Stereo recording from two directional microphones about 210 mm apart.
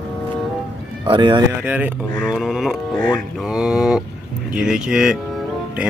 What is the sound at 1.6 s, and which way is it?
Speech, 5° right (ahead or behind).